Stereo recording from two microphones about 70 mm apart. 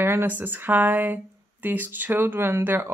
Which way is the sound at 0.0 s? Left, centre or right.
Right.